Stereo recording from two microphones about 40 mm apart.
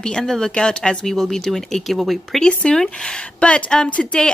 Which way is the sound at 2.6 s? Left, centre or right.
Left.